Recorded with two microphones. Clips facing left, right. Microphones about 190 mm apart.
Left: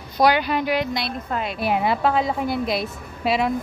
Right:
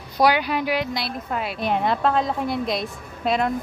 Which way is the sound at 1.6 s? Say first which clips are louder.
Left 1 dB; 5° left (ahead or behind).